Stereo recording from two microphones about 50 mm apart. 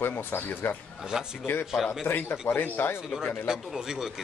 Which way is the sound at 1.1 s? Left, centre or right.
Centre.